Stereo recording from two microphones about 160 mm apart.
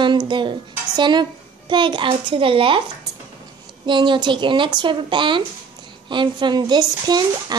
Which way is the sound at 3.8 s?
30° right (ahead or behind).